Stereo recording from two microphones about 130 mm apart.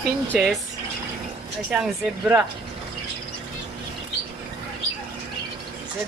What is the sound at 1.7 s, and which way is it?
Speech, 10° right (ahead or behind).